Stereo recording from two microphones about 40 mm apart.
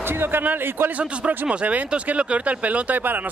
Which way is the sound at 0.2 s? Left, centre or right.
Right.